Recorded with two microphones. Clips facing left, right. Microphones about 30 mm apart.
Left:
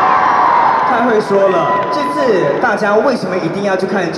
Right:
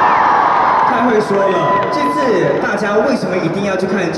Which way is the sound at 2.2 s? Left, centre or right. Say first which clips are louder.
Left 3 dB; left.